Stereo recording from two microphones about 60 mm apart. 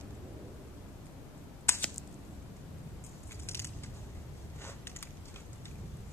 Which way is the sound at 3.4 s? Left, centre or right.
Left.